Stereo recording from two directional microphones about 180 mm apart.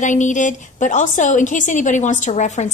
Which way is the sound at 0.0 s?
45° left (ahead or behind).